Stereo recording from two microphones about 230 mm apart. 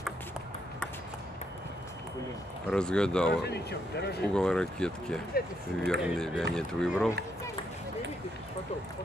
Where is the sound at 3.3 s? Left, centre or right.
Left.